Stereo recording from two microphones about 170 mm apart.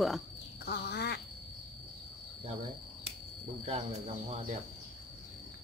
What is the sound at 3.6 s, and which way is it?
Speech, 35° right (ahead or behind).